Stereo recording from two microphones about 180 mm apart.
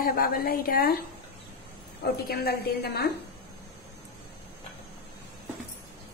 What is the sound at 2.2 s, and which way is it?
Speech, 60° left (ahead or behind).